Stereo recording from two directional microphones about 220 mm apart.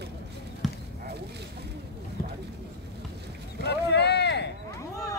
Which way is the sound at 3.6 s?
50° left (ahead or behind).